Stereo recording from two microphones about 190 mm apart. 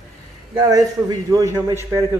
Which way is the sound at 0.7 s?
20° right (ahead or behind).